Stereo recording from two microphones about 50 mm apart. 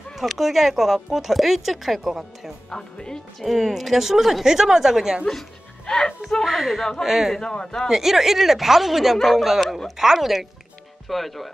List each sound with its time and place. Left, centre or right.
0.2 s speech: centre
2.7 s a man's voice: centre
3.3 s speech: centre
5.9 s speech: centre
6.4 s speech: centre
7.3 s a man's voice: centre
7.9 s speech: centre